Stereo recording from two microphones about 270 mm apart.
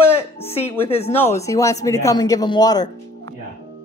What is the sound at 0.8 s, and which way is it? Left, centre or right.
Speech, left.